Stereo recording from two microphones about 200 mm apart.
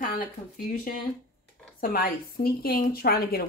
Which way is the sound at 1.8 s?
45° left (ahead or behind).